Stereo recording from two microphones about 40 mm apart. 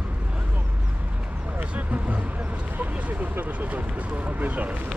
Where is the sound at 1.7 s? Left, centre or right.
Right.